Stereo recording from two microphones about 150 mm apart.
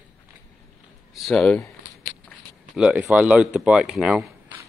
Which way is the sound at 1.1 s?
Centre (ahead or behind).